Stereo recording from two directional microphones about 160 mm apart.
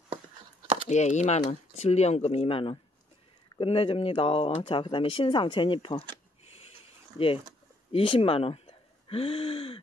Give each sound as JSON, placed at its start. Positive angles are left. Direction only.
{"t": 0.8, "sound": "speech", "side_deg": 45}
{"t": 7.9, "sound": "speech", "side_deg": 35}